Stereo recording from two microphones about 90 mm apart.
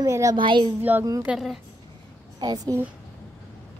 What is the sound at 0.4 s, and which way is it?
Speech, 60° right (ahead or behind).